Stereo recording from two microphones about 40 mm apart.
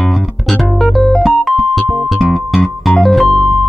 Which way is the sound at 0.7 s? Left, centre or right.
Centre.